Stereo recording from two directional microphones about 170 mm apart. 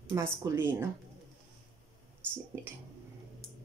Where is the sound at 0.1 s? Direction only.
15° right (ahead or behind).